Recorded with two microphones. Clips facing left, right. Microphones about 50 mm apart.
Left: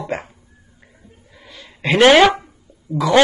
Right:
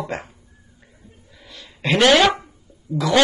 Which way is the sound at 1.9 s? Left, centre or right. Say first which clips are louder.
Left 4 dB; left.